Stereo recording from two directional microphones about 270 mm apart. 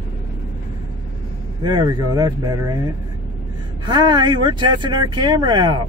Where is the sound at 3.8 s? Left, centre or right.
Centre.